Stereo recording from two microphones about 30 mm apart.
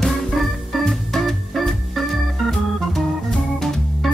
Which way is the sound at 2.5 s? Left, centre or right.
Centre.